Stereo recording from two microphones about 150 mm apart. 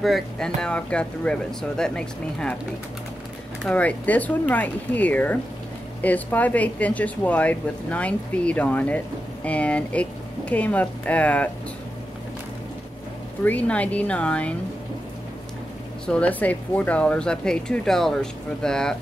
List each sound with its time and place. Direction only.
0.0 s speech: centre (ahead or behind)
3.6 s speech: 10° left (ahead or behind)
13.4 s speech: 10° left (ahead or behind)
16.1 s speech: 10° left (ahead or behind)